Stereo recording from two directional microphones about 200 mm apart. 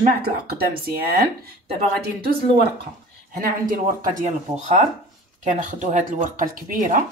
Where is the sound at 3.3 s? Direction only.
45° right (ahead or behind).